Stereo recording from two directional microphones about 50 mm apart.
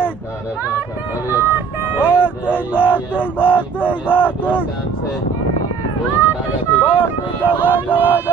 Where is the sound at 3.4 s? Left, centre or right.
Left.